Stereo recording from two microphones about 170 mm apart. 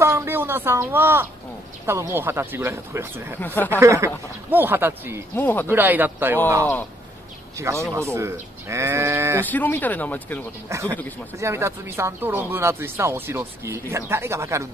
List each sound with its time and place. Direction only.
0.0 s speech: 15° right (ahead or behind)
3.3 s speech: 10° left (ahead or behind)
3.8 s speech: 15° right (ahead or behind)
5.3 s speech: 10° left (ahead or behind)
5.7 s speech: 10° right (ahead or behind)
7.5 s speech: 15° right (ahead or behind)
9.5 s speech: 10° left (ahead or behind)
10.7 s speech: 15° right (ahead or behind)